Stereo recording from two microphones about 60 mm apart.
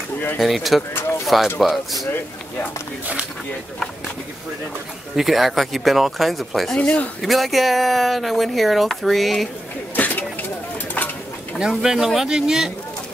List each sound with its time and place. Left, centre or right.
0.4 s speech: centre
5.1 s speech: centre
6.8 s speech: centre
7.2 s speech: centre
9.9 s a sound: left
11.0 s bird: left
11.6 s speech: centre